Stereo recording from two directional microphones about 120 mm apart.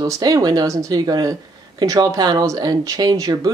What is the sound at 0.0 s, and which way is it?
Speech, 30° right (ahead or behind).